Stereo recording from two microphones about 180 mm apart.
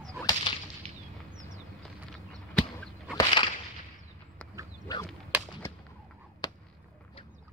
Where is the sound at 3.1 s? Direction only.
25° left (ahead or behind).